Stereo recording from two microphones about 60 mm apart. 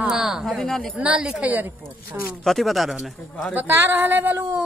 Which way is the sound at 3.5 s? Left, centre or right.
Right.